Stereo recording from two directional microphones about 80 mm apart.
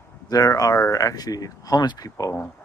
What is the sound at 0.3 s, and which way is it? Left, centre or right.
Speech, left.